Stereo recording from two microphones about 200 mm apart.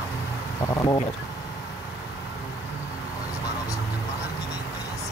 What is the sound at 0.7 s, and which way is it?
Speech, 20° left (ahead or behind).